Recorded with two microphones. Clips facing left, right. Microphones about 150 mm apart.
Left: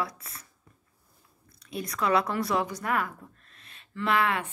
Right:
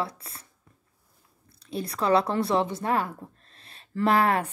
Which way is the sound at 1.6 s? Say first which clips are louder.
Right 2 dB; 30° right (ahead or behind).